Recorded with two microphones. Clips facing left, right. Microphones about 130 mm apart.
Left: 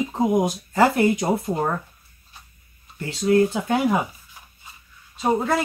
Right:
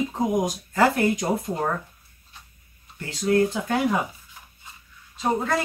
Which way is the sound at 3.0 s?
20° left (ahead or behind).